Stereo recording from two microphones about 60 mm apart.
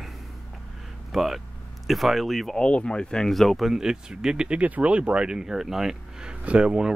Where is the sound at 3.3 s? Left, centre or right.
Centre.